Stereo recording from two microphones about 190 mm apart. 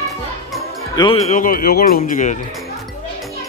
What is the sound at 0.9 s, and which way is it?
Speech, 25° left (ahead or behind).